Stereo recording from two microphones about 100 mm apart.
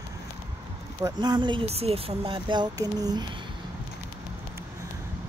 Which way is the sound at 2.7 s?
40° right (ahead or behind).